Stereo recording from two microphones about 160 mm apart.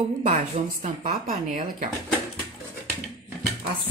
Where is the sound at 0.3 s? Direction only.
50° right (ahead or behind).